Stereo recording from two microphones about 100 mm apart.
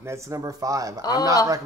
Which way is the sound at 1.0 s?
40° left (ahead or behind).